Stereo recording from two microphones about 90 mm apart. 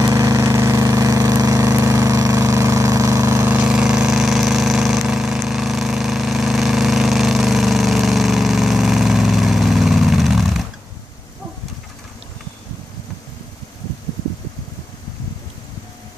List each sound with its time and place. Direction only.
0.0 s vehicle: 40° right (ahead or behind)
3.4 s vehicle: 15° right (ahead or behind)